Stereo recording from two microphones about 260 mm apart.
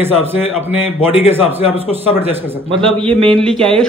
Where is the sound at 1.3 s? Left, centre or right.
Centre.